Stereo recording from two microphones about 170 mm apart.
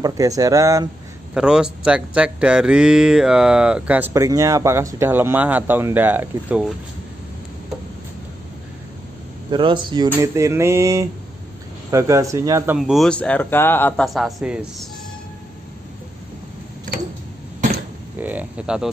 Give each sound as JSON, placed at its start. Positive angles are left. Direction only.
{"t": 0.4, "sound": "speech", "side_deg": -20}
{"t": 1.3, "sound": "speech", "side_deg": -5}
{"t": 9.5, "sound": "speech", "side_deg": -30}
{"t": 10.0, "sound": "speech", "side_deg": -15}
{"t": 12.7, "sound": "speech", "side_deg": 0}
{"t": 14.0, "sound": "speech", "side_deg": 0}
{"t": 18.2, "sound": "speech", "side_deg": -10}